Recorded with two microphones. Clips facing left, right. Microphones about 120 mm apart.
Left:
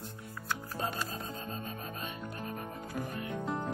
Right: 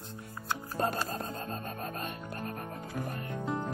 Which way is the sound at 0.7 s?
45° right (ahead or behind).